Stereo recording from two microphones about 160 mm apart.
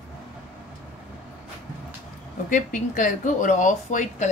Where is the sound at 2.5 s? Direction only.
55° left (ahead or behind).